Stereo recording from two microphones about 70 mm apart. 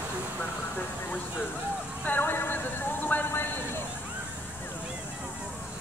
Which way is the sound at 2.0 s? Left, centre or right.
Left.